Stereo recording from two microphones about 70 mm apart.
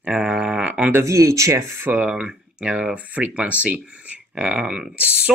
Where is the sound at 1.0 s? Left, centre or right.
Right.